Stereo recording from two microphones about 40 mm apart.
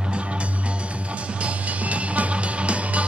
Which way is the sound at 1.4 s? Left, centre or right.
Right.